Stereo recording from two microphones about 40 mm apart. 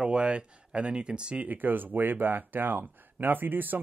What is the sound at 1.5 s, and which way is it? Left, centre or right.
Speech, right.